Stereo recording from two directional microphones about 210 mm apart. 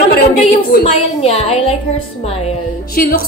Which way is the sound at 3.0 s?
45° left (ahead or behind).